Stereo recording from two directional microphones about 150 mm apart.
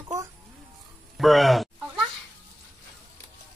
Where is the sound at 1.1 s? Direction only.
Centre (ahead or behind).